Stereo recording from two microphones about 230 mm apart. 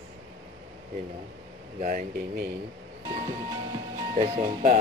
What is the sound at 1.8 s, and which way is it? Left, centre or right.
Speech, right.